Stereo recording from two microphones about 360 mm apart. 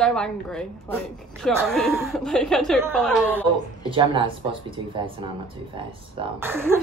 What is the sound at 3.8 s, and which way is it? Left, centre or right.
Speech, centre.